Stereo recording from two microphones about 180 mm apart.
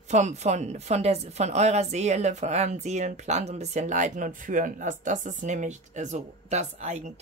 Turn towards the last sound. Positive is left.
turn(degrees=-40)  # may be behind; listen again after turning